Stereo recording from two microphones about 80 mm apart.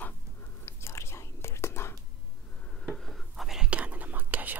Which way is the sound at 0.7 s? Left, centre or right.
Left.